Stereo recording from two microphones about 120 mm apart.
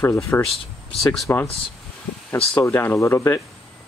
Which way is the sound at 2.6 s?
20° left (ahead or behind).